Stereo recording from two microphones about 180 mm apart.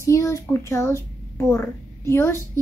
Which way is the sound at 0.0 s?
15° left (ahead or behind).